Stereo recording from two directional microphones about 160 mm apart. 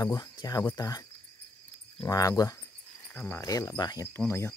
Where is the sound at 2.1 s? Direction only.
20° left (ahead or behind).